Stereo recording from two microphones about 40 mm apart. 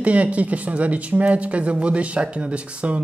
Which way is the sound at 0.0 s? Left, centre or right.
Right.